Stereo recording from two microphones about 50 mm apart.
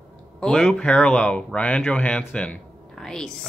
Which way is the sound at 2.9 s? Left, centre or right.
Centre.